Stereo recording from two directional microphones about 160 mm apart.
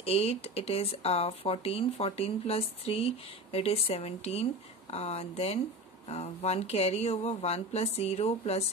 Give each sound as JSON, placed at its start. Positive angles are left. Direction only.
{"t": 0.0, "sound": "speech", "side_deg": 40}